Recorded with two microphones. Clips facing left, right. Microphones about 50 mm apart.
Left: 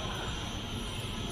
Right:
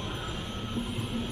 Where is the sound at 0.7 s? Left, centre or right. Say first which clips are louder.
Right 6 dB; centre.